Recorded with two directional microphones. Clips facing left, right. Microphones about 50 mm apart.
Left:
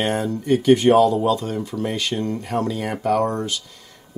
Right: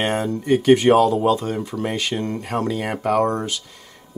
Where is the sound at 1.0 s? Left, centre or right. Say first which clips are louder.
Right 1 dB; right.